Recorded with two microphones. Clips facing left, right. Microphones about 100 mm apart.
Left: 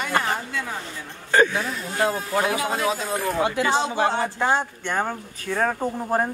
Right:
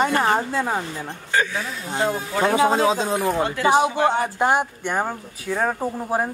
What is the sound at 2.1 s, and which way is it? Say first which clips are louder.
Speech: right 4 dB; 5° left (ahead or behind).